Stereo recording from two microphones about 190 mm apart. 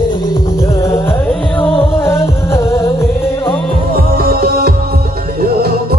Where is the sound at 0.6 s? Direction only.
15° left (ahead or behind).